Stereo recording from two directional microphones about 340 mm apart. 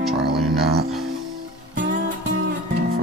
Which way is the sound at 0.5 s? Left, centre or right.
Right.